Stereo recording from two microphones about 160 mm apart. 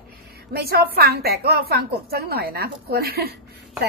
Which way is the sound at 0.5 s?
85° right.